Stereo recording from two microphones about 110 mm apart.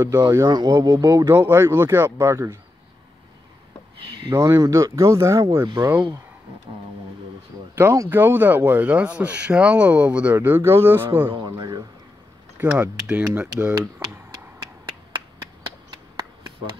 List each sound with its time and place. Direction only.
0.3 s speech: 35° right (ahead or behind)
4.3 s speech: 30° right (ahead or behind)
7.7 s speech: 25° right (ahead or behind)
11.2 s speech: 40° right (ahead or behind)
12.5 s speech: 15° right (ahead or behind)